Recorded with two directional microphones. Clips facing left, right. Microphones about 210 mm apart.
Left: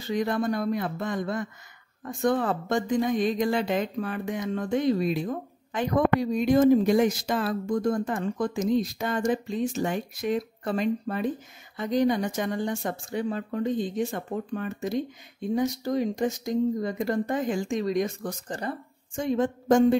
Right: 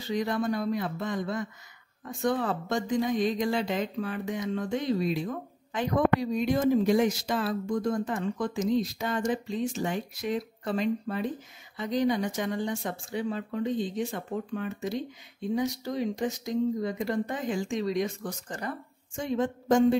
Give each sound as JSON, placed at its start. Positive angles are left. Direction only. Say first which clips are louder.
{"t": 0.1, "sound": "speech", "louder": "left 2 dB", "side_deg": 50}
{"t": 6.3, "sound": "speech", "louder": "left 5 dB", "side_deg": 50}
{"t": 18.5, "sound": "speech", "louder": "left 4 dB", "side_deg": 30}
{"t": 19.1, "sound": "speech", "louder": "left 3 dB", "side_deg": 45}